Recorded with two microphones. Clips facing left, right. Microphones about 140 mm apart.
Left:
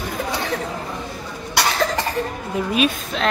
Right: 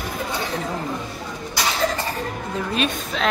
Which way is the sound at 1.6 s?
70° left (ahead or behind).